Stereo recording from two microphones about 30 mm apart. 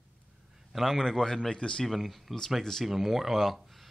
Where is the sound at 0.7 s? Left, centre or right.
Centre.